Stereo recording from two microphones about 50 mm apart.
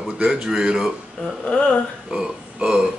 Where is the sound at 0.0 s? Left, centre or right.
Centre.